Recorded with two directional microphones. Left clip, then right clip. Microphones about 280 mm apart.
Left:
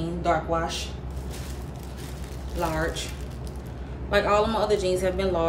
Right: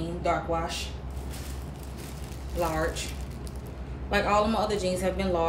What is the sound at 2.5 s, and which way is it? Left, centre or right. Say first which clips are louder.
Speech: left 1 dB; centre.